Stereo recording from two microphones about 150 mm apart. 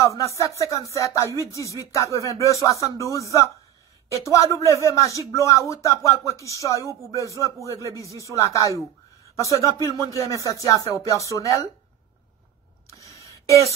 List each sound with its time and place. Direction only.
0.0 s speech: 20° left (ahead or behind)
7.8 s speech: 20° right (ahead or behind)
8.1 s speech: 20° left (ahead or behind)
12.9 s a sound: 20° left (ahead or behind)